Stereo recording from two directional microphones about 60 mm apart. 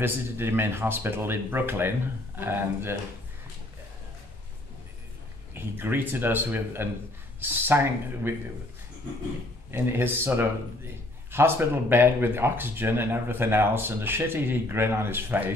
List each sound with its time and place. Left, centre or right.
0.0 s speech: right
5.5 s speech: right
9.7 s speech: right